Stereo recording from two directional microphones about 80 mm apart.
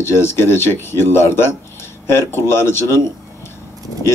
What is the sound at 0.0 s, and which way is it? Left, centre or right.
Speech, left.